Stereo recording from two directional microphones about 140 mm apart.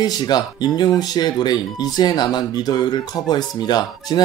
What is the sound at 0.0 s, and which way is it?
Speech, 30° left (ahead or behind).